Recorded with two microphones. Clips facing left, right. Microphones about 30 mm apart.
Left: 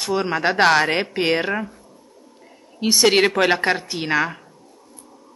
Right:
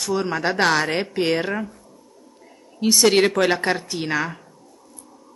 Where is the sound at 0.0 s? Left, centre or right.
Left.